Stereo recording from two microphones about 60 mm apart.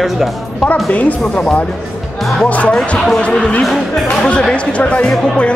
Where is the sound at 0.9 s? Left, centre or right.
Left.